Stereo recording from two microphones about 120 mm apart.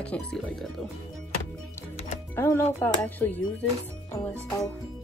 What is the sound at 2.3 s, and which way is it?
Speech, 20° left (ahead or behind).